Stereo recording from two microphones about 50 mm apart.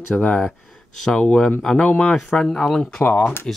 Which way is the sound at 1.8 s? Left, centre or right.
Left.